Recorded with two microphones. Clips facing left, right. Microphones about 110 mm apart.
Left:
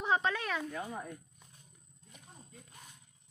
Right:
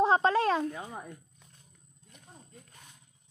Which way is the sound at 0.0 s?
35° right (ahead or behind).